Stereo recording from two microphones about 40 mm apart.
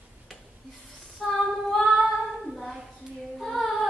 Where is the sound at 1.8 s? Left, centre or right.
Centre.